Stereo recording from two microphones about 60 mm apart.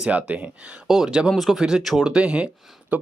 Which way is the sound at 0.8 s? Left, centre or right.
Centre.